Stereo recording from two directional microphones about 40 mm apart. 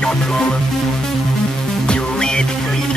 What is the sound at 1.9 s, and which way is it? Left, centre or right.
Music, left.